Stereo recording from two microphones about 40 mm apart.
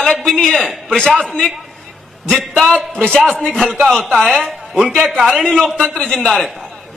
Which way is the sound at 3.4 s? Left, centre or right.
Centre.